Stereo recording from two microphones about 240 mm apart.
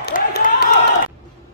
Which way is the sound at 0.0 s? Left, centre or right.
Left.